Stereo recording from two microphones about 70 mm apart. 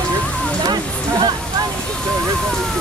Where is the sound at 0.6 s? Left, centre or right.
Right.